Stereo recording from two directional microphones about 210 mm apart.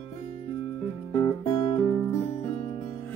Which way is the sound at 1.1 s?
20° left (ahead or behind).